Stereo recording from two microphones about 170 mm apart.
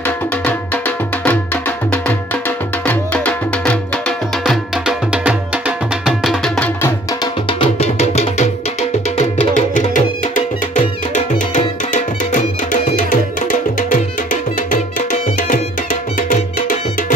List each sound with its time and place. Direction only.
0.0 s music: 10° left (ahead or behind)
4.5 s music: 5° right (ahead or behind)
7.4 s music: 35° left (ahead or behind); by 16.7 s 50° left (ahead or behind)